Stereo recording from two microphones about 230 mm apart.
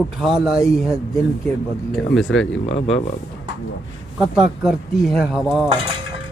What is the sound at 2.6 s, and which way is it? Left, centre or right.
Speech, left.